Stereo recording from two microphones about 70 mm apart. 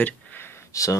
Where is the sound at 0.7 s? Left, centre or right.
Left.